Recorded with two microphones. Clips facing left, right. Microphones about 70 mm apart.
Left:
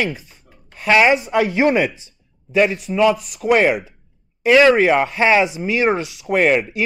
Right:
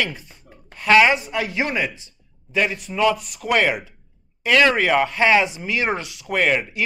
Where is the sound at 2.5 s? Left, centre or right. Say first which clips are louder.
Left 6 dB; centre.